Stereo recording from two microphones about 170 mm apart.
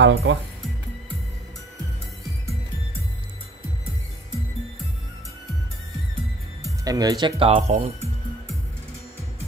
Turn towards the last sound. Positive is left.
turn(degrees=-40)  # may be behind; listen again after turning